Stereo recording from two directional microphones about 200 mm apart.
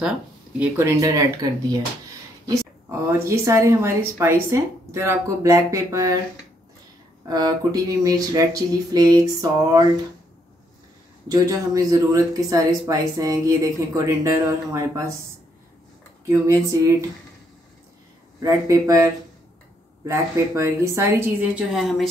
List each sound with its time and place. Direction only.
0.6 s speech: 10° right (ahead or behind)
7.2 s speech: 20° right (ahead or behind)
11.2 s speech: 15° right (ahead or behind)
16.3 s speech: 15° right (ahead or behind)
18.4 s speech: 15° right (ahead or behind); by 22.1 s centre (ahead or behind)